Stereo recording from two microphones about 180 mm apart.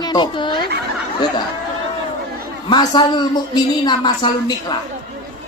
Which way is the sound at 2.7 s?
25° left (ahead or behind).